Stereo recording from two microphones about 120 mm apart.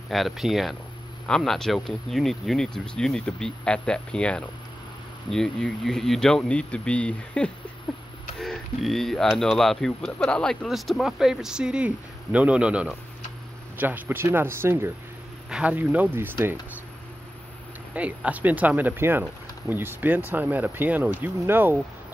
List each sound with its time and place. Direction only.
0.1 s speech: centre (ahead or behind); by 16.5 s 20° right (ahead or behind)
17.9 s speech: 10° right (ahead or behind)